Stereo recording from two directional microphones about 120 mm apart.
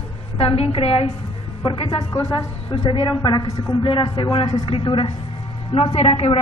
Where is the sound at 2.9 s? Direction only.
45° left (ahead or behind).